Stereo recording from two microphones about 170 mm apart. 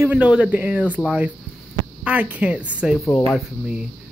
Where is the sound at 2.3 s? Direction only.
10° right (ahead or behind).